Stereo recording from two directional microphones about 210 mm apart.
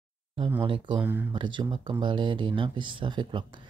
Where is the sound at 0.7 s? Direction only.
20° right (ahead or behind).